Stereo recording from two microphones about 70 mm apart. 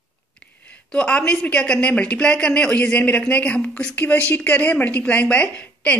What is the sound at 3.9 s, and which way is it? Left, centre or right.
A woman's voice, left.